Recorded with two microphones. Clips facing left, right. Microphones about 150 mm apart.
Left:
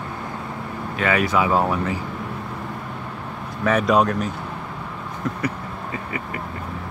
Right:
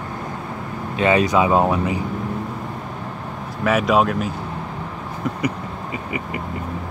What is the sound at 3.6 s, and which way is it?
Speech, 5° right (ahead or behind).